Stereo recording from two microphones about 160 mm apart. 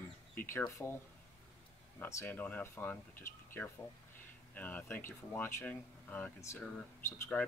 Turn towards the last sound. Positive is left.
turn(degrees=10)  # may be behind; listen again after turning